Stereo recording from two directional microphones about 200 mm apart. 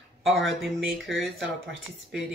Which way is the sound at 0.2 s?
Centre (ahead or behind).